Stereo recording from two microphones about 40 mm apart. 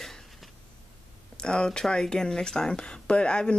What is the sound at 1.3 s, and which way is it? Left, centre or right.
Speech, left.